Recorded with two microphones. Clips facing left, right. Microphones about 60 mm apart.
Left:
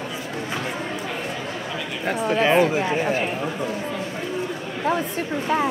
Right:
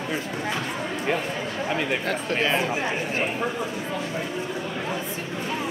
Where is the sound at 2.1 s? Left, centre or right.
Left.